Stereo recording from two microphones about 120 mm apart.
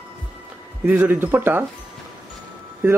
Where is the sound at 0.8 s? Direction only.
15° right (ahead or behind).